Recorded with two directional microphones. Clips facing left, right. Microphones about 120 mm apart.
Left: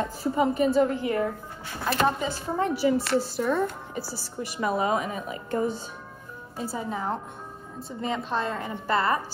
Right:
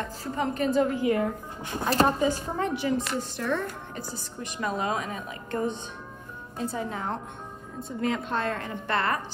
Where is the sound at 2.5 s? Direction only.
5° left (ahead or behind).